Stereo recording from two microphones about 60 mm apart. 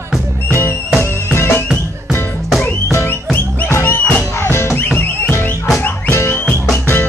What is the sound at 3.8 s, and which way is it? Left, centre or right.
Music, left.